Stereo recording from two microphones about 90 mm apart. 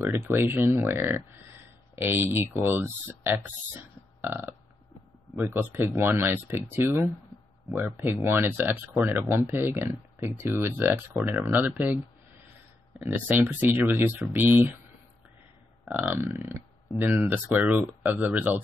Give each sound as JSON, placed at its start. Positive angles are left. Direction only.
{"t": 0.0, "sound": "speech", "side_deg": -30}
{"t": 4.2, "sound": "burping", "side_deg": -20}
{"t": 5.3, "sound": "speech", "side_deg": -25}
{"t": 11.5, "sound": "speech", "side_deg": -20}
{"t": 13.1, "sound": "speech", "side_deg": -20}
{"t": 16.0, "sound": "burping", "side_deg": -25}
{"t": 17.0, "sound": "speech", "side_deg": -20}